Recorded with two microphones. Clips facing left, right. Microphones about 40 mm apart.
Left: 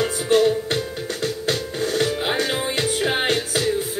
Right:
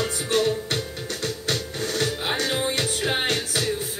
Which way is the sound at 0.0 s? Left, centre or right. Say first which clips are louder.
Left 5 dB; centre.